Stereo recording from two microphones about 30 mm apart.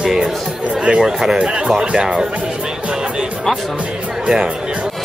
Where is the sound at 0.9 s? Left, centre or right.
Centre.